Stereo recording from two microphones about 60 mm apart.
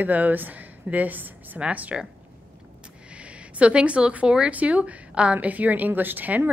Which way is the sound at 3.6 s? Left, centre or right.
Right.